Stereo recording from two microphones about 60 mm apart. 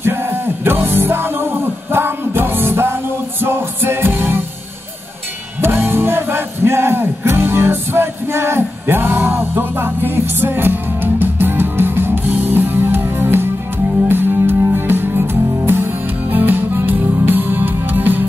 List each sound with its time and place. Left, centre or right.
0.0 s music: right
5.6 s music: right